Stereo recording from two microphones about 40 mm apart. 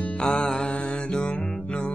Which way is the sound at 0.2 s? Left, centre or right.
Left.